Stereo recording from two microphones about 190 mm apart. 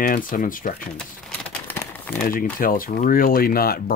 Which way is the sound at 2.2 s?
50° left (ahead or behind).